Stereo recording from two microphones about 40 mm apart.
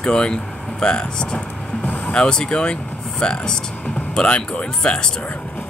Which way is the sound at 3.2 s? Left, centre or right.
Left.